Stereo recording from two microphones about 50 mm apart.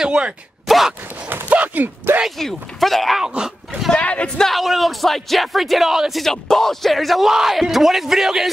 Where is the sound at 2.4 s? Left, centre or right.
Centre.